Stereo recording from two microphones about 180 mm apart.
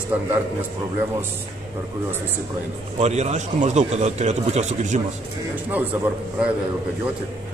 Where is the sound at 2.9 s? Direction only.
40° right (ahead or behind).